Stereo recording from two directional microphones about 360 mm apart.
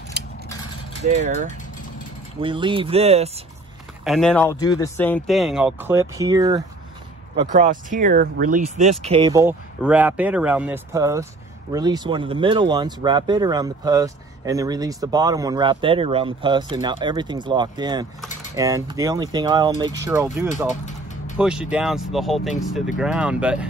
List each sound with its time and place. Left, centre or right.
0.2 s a sound: right
1.0 s speech: centre
4.0 s speech: centre
7.5 s speech: right; by 23.6 s centre